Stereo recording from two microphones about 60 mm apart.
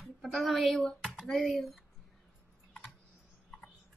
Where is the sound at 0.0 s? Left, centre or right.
Centre.